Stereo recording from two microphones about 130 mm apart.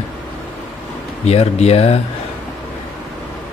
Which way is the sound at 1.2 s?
55° left (ahead or behind).